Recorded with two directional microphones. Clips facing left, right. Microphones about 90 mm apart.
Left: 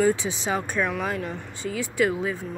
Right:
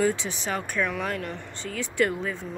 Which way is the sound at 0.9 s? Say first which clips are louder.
Left 2 dB; 5° left (ahead or behind).